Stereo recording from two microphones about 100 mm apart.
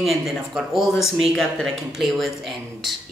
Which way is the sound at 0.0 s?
Centre (ahead or behind).